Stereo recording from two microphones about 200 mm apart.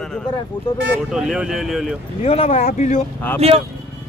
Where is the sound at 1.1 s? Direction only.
5° right (ahead or behind).